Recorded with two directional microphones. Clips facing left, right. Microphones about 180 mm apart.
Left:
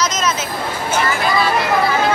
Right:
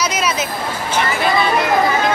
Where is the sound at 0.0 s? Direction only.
10° right (ahead or behind).